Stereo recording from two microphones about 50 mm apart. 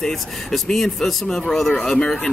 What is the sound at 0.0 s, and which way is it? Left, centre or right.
A man's voice, centre.